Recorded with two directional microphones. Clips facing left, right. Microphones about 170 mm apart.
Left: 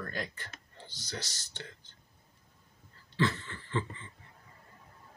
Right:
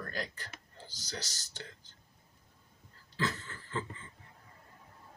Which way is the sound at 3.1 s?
40° right (ahead or behind).